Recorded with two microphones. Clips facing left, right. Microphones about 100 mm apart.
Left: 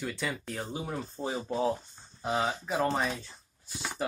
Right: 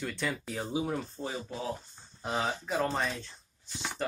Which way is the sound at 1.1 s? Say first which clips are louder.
Left 3 dB; 20° left (ahead or behind).